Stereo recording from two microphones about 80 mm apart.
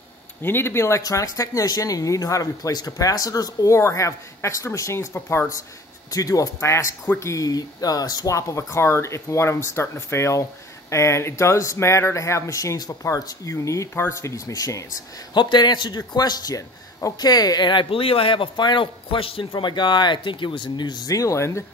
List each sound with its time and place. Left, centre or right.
0.4 s speech: left
1.0 s speech: left
3.7 s speech: left
6.0 s speech: left
15.3 s a man's voice: left